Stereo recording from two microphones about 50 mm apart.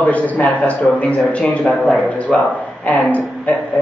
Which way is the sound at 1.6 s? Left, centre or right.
Centre.